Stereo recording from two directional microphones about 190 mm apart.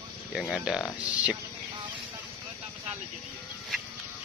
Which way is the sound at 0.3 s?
Centre (ahead or behind).